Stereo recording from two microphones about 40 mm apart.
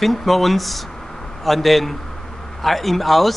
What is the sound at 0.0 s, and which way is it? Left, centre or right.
Speech, centre.